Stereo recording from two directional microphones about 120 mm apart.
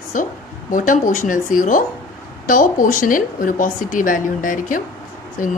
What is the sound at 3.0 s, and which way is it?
A woman's voice, 90° left.